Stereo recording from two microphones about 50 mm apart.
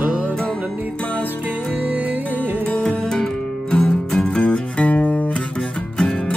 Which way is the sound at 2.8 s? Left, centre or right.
Centre.